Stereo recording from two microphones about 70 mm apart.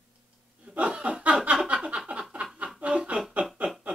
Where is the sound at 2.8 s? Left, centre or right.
Centre.